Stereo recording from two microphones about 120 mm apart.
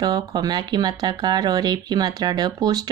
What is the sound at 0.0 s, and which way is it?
A woman's voice, 35° right (ahead or behind).